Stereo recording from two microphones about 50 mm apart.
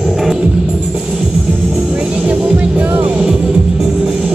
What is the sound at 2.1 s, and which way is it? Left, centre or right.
Music, right.